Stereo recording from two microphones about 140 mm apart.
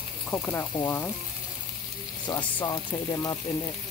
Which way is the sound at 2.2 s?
30° left (ahead or behind).